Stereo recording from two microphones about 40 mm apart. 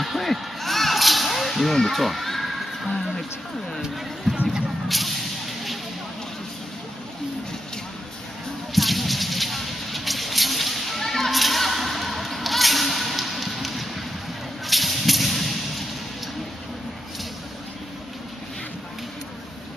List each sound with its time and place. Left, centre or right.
0.0 s whip: centre
4.3 s music: centre
4.8 s vehicle: centre
8.7 s a sound: centre
14.7 s whip: centre